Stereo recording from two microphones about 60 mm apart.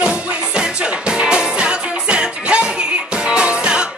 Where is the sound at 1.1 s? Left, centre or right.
Centre.